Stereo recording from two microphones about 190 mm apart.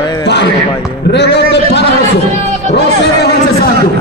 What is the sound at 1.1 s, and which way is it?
Music, 65° left (ahead or behind).